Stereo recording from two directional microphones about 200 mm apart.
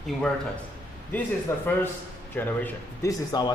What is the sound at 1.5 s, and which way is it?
A man's voice, 15° left (ahead or behind).